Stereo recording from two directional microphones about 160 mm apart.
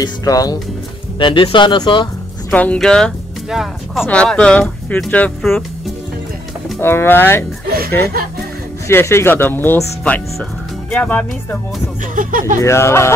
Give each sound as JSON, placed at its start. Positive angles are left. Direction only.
{"t": 0.0, "sound": "speech", "side_deg": 20}
{"t": 2.5, "sound": "speech", "side_deg": 10}
{"t": 6.8, "sound": "speech", "side_deg": 15}
{"t": 7.6, "sound": "chuckle", "side_deg": -70}
{"t": 8.8, "sound": "speech", "side_deg": 15}
{"t": 12.2, "sound": "speech", "side_deg": -55}
{"t": 12.5, "sound": "speech", "side_deg": 15}